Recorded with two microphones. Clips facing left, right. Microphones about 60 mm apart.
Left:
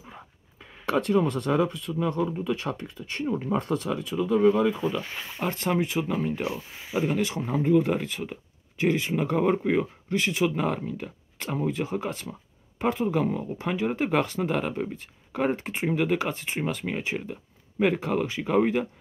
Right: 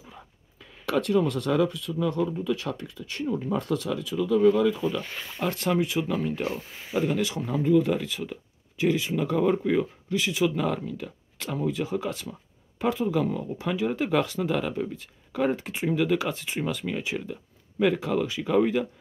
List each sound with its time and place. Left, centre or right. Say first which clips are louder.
0.8 s speech: even; left
4.8 s speech: even; centre
5.5 s speech: right 1 dB; left
7.2 s speech: left 1 dB; left
10.0 s speech: left 1 dB; left
10.4 s speech: even; left
15.8 s speech: right 1 dB; left